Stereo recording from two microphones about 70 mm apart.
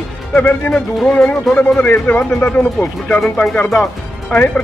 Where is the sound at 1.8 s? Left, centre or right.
Left.